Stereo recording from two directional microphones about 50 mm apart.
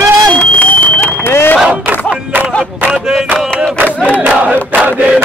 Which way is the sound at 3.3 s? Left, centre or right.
Right.